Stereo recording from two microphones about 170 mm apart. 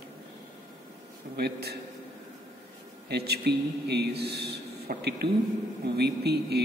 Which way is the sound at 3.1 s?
70° right (ahead or behind).